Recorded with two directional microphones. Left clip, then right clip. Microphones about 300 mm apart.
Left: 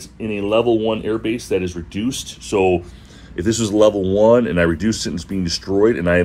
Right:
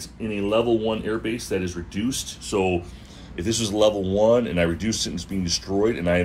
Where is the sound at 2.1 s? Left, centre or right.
Centre.